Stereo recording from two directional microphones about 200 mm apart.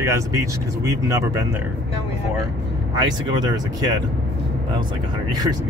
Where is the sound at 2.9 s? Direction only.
20° right (ahead or behind).